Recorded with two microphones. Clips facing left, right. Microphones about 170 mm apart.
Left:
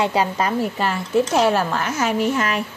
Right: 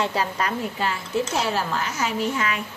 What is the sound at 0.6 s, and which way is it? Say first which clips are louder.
A woman's voice: left 5 dB; 55° left (ahead or behind).